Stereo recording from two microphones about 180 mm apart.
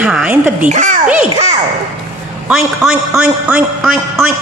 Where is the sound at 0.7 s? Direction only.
45° right (ahead or behind).